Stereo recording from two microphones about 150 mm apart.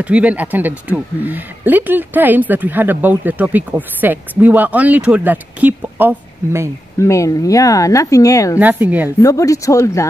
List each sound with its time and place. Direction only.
0.0 s speech: 10° right (ahead or behind)
7.0 s speech: 20° left (ahead or behind)
8.5 s speech: 10° right (ahead or behind)
9.2 s speech: 20° left (ahead or behind)